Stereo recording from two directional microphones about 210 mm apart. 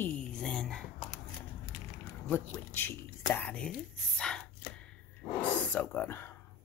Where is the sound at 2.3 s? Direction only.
10° left (ahead or behind).